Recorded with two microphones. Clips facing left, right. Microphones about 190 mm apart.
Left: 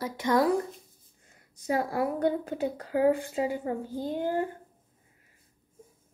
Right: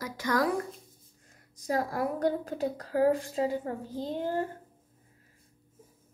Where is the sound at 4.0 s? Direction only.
25° right (ahead or behind).